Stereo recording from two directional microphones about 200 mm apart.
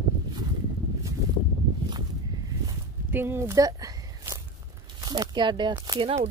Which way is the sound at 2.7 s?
10° right (ahead or behind).